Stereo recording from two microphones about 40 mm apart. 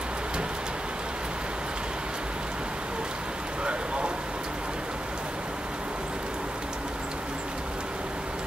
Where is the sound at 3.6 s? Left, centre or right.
Right.